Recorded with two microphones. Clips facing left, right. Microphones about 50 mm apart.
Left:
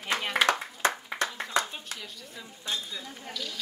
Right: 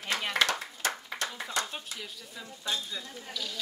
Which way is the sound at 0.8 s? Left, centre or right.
Left.